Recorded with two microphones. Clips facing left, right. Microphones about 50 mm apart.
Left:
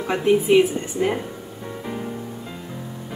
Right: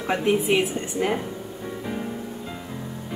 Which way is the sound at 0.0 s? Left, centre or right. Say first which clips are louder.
Left 3 dB; centre.